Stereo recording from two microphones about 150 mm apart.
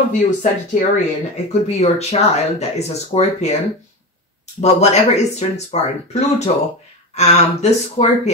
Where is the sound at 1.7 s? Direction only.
45° left (ahead or behind).